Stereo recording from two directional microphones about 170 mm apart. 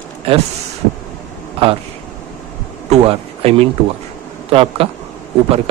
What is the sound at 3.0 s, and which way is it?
A man's voice, 35° right (ahead or behind).